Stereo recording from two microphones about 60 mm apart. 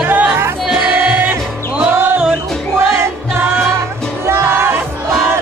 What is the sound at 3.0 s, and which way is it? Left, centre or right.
Music, right.